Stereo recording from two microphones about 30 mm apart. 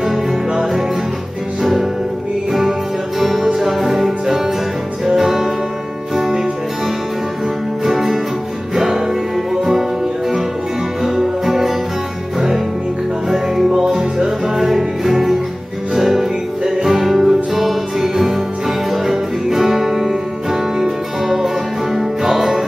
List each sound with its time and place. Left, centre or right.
0.5 s music: centre
3.2 s music: centre
7.8 s music: centre
11.1 s music: centre